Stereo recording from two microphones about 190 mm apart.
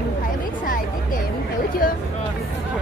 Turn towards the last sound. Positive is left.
turn(degrees=45)  # may be behind; listen again after turning